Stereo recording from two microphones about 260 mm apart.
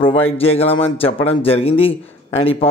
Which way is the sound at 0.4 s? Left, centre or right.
Left.